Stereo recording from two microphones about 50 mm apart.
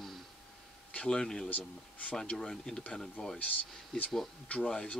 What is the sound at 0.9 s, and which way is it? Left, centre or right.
Speech, centre.